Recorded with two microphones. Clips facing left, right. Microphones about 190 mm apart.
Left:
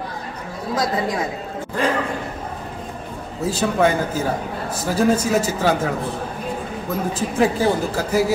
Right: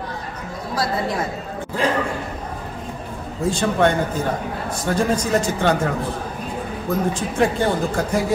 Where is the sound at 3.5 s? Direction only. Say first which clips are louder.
Even; 5° left (ahead or behind).